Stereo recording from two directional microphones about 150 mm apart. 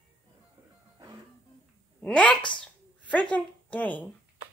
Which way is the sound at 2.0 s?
5° left (ahead or behind).